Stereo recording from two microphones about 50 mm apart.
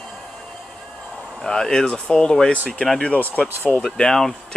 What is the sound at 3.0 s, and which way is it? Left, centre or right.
Speech, left.